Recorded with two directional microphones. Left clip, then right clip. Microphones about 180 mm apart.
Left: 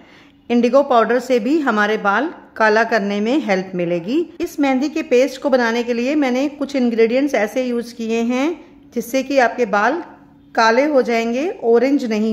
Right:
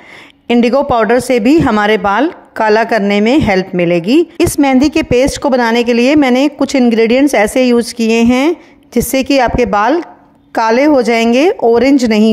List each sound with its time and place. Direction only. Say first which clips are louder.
0.5 s a woman's voice: right 4 dB; 40° right (ahead or behind)